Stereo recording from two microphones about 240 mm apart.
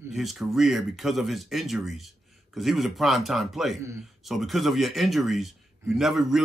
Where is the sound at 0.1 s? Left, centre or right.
Centre.